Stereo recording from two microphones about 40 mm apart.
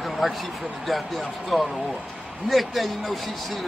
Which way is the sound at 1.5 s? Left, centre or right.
Centre.